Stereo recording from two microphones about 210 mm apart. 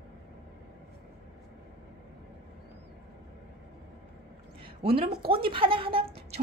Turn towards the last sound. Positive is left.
turn(degrees=-25)  # may be behind; listen again after turning